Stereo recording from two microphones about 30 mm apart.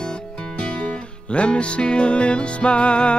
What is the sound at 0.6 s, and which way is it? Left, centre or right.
Music, left.